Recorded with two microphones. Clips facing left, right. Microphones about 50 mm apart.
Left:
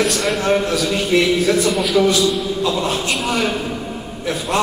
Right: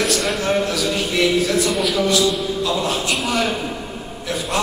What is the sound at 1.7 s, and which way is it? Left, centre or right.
Speech, centre.